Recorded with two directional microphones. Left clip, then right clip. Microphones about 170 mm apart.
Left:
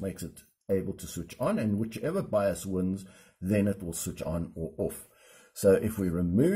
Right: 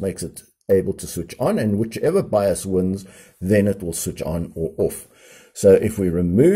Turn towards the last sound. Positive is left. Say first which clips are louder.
# right 11 dB
turn(degrees=-25)  # may be behind; listen again after turning